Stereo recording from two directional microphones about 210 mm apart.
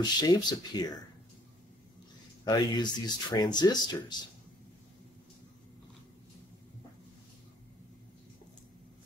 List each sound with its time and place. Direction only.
0.2 s speech: 20° left (ahead or behind)
2.4 s speech: 20° left (ahead or behind)